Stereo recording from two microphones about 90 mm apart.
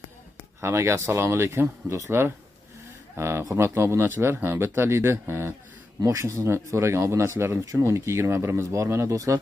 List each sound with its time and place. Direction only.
0.6 s speech: 30° right (ahead or behind)
5.9 s speech: 35° right (ahead or behind)